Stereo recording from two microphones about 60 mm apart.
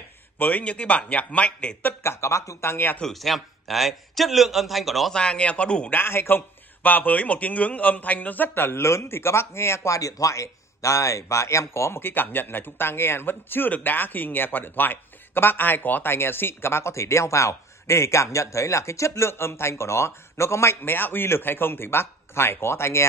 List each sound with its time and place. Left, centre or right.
0.4 s speech: left
2.0 s speech: left
2.6 s a man's voice: left
3.1 s a man's voice: centre
5.1 s speech: centre
5.9 s a man's voice: left
12.0 s a man's voice: left
20.8 s a man's voice: left